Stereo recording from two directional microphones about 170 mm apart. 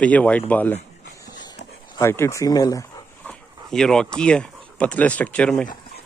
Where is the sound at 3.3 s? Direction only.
5° left (ahead or behind).